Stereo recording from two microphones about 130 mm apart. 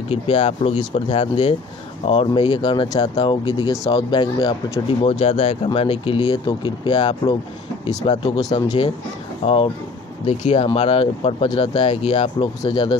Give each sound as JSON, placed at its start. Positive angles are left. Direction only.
{"t": 0.1, "sound": "speech", "side_deg": 50}
{"t": 5.2, "sound": "speech", "side_deg": 45}
{"t": 8.6, "sound": "speech", "side_deg": 45}
{"t": 11.4, "sound": "speech", "side_deg": 35}
{"t": 11.8, "sound": "speech", "side_deg": 45}